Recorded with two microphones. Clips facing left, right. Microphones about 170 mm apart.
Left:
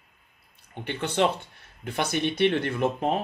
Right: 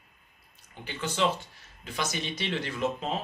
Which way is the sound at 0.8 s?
60° left (ahead or behind).